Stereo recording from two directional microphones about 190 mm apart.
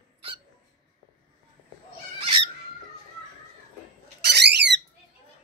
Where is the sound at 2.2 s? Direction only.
30° right (ahead or behind).